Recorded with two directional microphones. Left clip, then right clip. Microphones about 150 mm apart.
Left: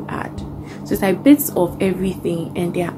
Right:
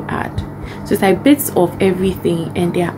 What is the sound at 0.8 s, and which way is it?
A woman's voice, 10° right (ahead or behind).